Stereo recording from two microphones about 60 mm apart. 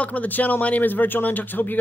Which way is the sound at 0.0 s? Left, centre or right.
Left.